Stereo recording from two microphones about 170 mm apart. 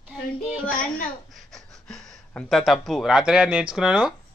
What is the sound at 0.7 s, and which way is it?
Speech, 55° left (ahead or behind).